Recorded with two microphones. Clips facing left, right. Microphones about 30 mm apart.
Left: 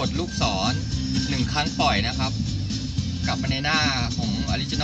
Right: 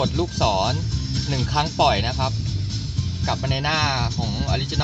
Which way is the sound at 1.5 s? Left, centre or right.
Right.